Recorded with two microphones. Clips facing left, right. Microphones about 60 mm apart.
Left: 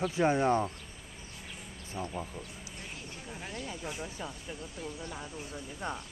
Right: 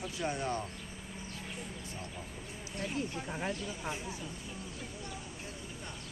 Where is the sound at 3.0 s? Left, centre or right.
Right.